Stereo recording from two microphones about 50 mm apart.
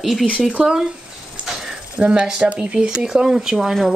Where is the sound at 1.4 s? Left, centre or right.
Centre.